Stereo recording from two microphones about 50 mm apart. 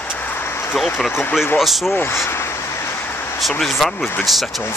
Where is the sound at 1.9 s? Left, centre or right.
Left.